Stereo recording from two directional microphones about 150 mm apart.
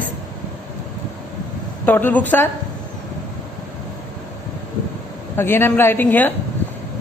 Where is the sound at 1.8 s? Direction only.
10° left (ahead or behind).